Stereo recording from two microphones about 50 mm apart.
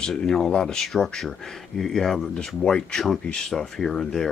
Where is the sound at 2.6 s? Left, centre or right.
Centre.